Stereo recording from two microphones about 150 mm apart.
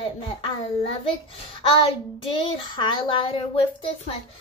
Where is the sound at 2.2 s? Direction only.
35° left (ahead or behind).